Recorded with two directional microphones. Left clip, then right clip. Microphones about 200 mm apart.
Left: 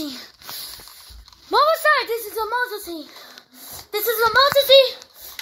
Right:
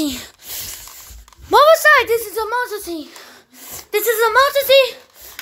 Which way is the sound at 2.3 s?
Centre (ahead or behind).